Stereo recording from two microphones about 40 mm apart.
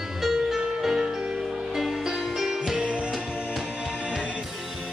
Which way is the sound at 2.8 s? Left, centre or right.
Right.